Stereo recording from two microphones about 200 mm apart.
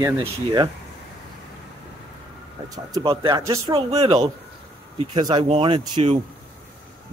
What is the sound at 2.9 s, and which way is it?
Speech, 20° right (ahead or behind).